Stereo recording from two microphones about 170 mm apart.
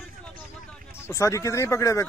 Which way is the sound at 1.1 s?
20° left (ahead or behind).